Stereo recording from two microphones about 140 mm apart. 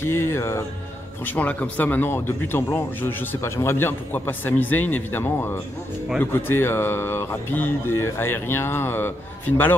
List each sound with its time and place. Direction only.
0.0 s speech: 15° left (ahead or behind)